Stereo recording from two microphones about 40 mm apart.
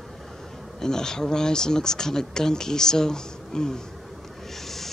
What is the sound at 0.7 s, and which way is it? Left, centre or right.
Speech, centre.